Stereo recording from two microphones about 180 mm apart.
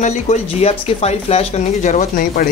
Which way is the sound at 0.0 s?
40° left (ahead or behind).